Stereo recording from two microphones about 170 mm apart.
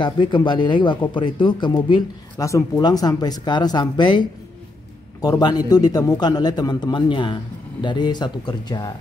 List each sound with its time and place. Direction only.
0.0 s speech: 30° left (ahead or behind)